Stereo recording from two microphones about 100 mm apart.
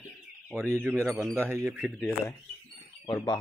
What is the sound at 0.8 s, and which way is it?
Speech, 25° right (ahead or behind).